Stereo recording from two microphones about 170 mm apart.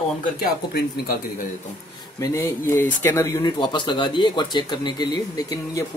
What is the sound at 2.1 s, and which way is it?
Speech, 15° left (ahead or behind).